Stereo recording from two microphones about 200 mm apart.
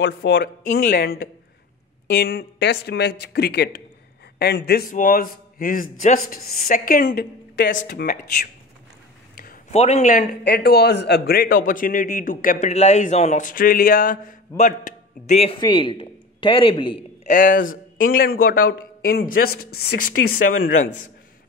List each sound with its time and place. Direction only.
0.0 s a man's voice: 60° left (ahead or behind); by 7.1 s 45° left (ahead or behind)
7.1 s speech: 55° left (ahead or behind)
9.3 s a sound: 45° left (ahead or behind)
9.7 s a man's voice: 35° left (ahead or behind)
10.4 s a man's voice: 50° left (ahead or behind); by 17.3 s 25° left (ahead or behind)
17.3 s a man's voice: 40° left (ahead or behind)